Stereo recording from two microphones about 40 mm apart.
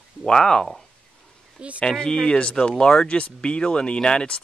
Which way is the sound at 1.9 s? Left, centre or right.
Centre.